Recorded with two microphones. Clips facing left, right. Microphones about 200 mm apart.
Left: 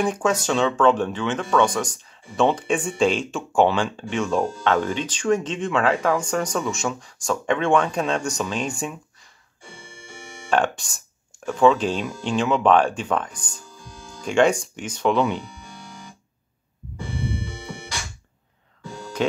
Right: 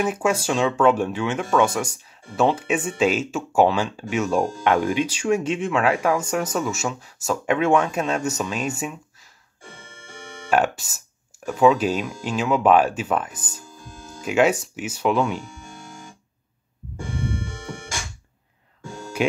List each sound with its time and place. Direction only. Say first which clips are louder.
0.0 s speech: even; 10° right (ahead or behind)
9.8 s organ: left 2 dB; 10° left (ahead or behind)
10.5 s speech: right 1 dB; 5° right (ahead or behind)
15.4 s music: right 1 dB; 45° right (ahead or behind)
17.5 s music: right 1 dB; 45° right (ahead or behind)